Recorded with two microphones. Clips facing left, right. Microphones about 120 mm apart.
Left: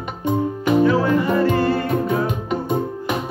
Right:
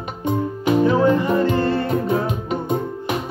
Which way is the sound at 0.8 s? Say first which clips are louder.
Right 1 dB; 20° right (ahead or behind).